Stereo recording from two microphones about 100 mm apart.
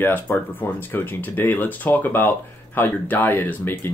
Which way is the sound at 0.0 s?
20° left (ahead or behind).